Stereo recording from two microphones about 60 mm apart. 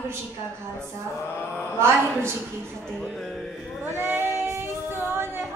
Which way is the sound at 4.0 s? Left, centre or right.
Right.